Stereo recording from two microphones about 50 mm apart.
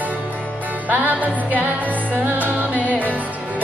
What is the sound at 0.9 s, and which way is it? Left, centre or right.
Music, right.